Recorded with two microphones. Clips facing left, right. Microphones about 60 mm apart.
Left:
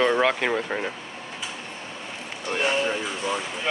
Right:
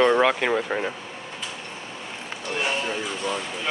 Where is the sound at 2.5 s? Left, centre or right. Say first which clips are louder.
Left 3 dB; centre.